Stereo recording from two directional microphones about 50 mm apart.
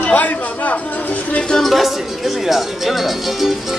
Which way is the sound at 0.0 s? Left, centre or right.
Left.